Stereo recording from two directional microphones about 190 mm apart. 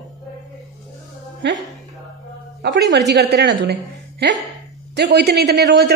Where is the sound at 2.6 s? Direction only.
70° right (ahead or behind).